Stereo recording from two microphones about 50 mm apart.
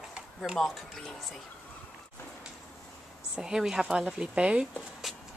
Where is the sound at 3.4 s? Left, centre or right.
Centre.